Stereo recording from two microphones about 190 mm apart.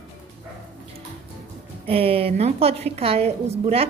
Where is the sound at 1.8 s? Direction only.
30° right (ahead or behind).